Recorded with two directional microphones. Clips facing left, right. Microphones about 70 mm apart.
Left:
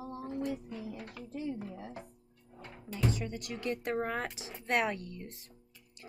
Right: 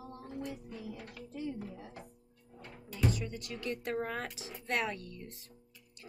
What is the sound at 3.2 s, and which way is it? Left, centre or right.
A woman's voice, left.